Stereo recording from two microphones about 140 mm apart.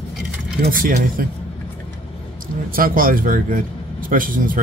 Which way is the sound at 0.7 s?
85° right.